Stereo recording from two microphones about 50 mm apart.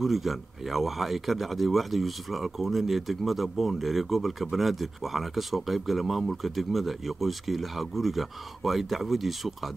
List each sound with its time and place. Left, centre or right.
0.0 s speech: centre